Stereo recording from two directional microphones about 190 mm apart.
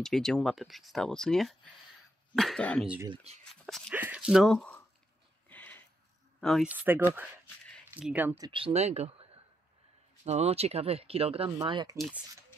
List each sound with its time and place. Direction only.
0.0 s speech: centre (ahead or behind)
5.5 s a sound: 10° left (ahead or behind)
6.4 s speech: centre (ahead or behind)
6.7 s speech: 10° right (ahead or behind)
8.4 s speech: 25° right (ahead or behind)
11.5 s speech: 20° right (ahead or behind)